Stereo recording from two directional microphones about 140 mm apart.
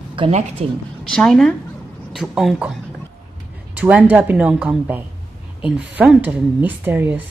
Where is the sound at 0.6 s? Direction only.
45° right (ahead or behind).